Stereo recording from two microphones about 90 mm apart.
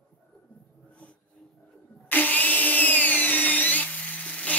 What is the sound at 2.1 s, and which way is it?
Tools, 20° left (ahead or behind).